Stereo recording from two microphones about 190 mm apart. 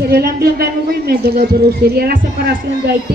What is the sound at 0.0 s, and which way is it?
Speech, 55° right (ahead or behind).